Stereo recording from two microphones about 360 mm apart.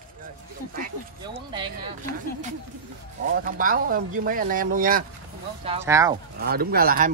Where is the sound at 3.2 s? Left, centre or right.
Right.